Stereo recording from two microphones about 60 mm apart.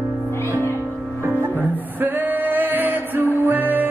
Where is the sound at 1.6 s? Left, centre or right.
Right.